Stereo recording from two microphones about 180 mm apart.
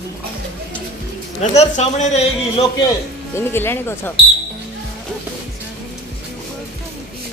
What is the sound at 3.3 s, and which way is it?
Speech, 10° left (ahead or behind).